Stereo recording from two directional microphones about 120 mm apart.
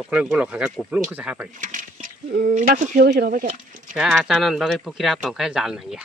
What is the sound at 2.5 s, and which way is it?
Speech, 90° right.